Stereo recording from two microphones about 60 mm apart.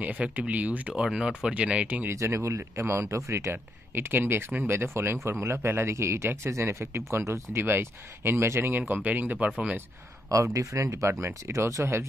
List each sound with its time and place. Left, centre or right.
0.0 s speech: right
1.0 s speech: centre
2.0 s speech: right
10.3 s speech: right